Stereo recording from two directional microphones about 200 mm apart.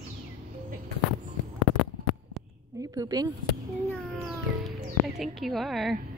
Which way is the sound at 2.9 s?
20° right (ahead or behind).